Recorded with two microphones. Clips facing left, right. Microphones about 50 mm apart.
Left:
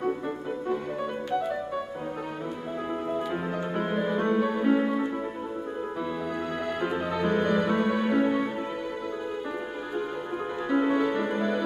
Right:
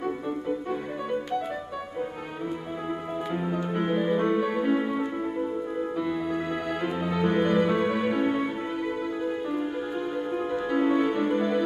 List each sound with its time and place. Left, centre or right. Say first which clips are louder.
3.3 s music: right 2 dB; centre
3.7 s music: right 3 dB; centre
6.3 s music: right 1 dB; centre
10.7 s music: even; centre